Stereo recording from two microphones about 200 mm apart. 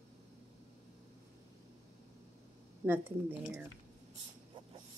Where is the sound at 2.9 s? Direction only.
10° right (ahead or behind).